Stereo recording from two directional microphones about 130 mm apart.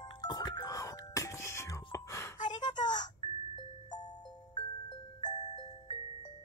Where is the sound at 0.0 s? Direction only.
30° left (ahead or behind).